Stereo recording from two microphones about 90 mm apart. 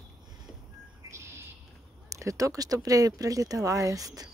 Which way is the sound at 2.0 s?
35° right (ahead or behind).